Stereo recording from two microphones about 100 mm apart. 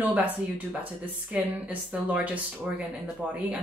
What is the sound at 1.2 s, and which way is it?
Speech, 10° right (ahead or behind).